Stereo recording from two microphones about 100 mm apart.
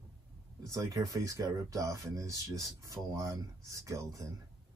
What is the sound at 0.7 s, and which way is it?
Speech, 35° right (ahead or behind).